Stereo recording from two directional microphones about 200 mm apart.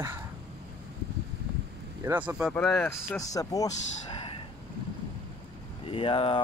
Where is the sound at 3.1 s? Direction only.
15° left (ahead or behind).